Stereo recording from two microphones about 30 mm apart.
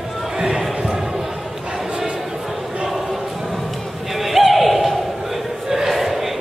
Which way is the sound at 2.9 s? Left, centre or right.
Centre.